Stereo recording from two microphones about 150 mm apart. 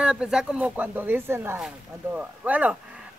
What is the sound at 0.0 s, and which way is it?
Speech, 5° right (ahead or behind).